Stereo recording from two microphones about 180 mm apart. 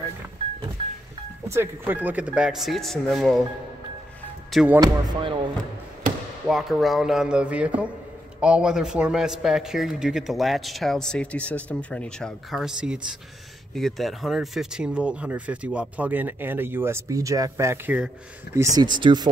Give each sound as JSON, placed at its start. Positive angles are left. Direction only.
{"t": 1.5, "sound": "a man's voice", "side_deg": -10}
{"t": 4.5, "sound": "speech", "side_deg": 0}
{"t": 4.7, "sound": "speech", "side_deg": -25}
{"t": 6.4, "sound": "a man's voice", "side_deg": 0}
{"t": 18.6, "sound": "speech", "side_deg": -20}